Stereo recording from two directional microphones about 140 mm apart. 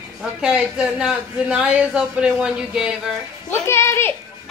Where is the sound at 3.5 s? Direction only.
20° left (ahead or behind).